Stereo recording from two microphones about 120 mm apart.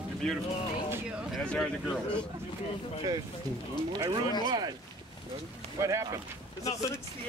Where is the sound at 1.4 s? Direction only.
10° left (ahead or behind).